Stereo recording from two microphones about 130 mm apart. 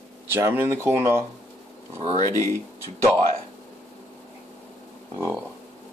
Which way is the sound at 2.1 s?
30° left (ahead or behind).